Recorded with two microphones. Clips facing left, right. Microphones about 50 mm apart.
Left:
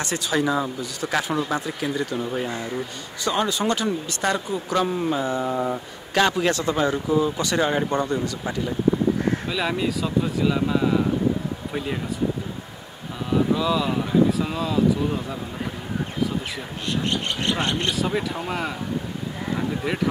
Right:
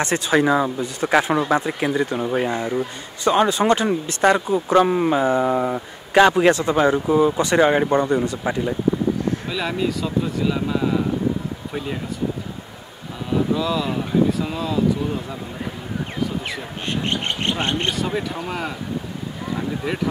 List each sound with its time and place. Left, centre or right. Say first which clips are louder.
0.0 s a man's voice: right 5 dB; right
9.5 s speech: right 1 dB; centre
13.6 s speech: even; centre
16.9 s a man's voice: right 1 dB; right
18.0 s speech: even; centre